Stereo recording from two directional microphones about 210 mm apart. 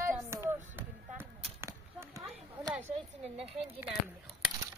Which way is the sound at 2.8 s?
30° right (ahead or behind).